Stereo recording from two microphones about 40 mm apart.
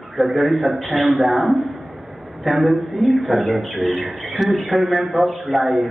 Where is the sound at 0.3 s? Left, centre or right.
Right.